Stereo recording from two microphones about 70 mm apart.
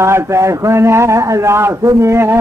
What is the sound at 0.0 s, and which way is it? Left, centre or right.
A man's voice, right.